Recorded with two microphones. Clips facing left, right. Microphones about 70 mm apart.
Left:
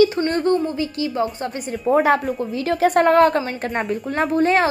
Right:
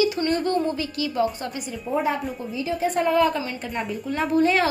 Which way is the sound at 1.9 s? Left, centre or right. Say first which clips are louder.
Left 8 dB; left.